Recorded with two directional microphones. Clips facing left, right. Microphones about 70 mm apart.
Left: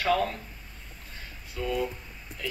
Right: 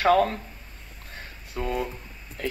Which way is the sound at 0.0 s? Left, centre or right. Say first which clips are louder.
Right 6 dB; right.